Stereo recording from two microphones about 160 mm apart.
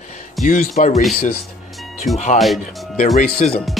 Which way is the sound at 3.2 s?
50° left (ahead or behind).